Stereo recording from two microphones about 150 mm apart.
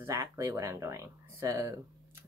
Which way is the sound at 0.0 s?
20° right (ahead or behind).